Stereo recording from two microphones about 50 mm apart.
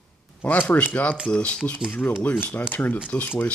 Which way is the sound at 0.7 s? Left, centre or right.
Left.